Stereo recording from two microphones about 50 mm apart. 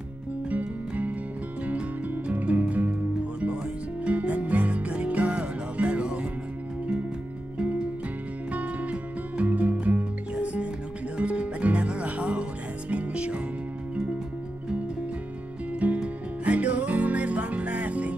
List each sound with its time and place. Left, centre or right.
0.5 s music: right
7.5 s music: right
16.0 s music: right